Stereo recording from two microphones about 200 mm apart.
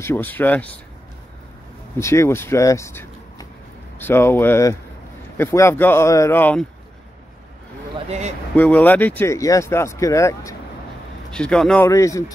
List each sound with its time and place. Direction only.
0.0 s speech: 10° left (ahead or behind)
2.0 s speech: 15° left (ahead or behind)
8.1 s speech: 35° right (ahead or behind)
8.5 s speech: 10° left (ahead or behind)
11.3 s speech: 5° left (ahead or behind)
11.9 s speech: 15° left (ahead or behind)